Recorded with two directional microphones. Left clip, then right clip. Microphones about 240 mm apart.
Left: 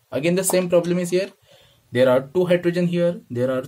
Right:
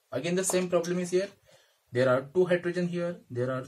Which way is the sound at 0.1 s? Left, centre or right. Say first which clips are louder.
Left 9 dB; left.